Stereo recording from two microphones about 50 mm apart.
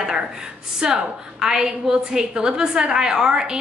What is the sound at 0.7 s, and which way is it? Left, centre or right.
A woman's voice, centre.